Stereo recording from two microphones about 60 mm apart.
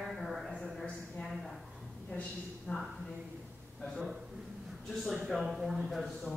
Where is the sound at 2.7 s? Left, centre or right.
Left.